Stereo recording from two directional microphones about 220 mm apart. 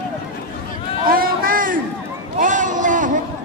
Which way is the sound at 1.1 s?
40° right (ahead or behind).